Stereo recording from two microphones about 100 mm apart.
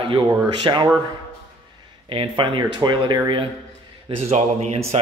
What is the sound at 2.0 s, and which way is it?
Speech, 65° right (ahead or behind).